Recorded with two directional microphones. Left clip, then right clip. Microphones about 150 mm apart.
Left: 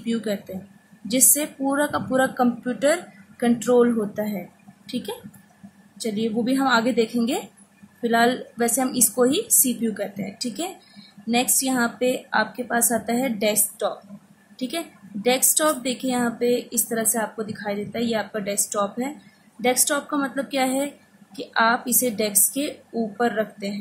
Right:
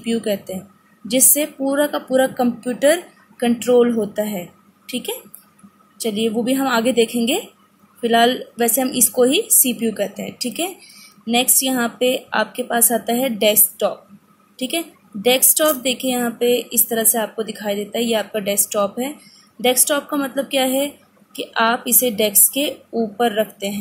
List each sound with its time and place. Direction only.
0.0 s a woman's voice: 15° right (ahead or behind)
4.8 s a sound: 15° right (ahead or behind)
6.1 s a woman's voice: 20° right (ahead or behind)
14.6 s a woman's voice: 20° right (ahead or behind)